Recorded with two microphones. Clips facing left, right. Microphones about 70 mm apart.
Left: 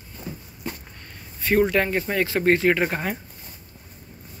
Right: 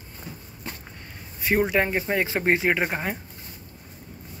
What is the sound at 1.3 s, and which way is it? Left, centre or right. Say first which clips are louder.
Speech: left 2 dB; centre.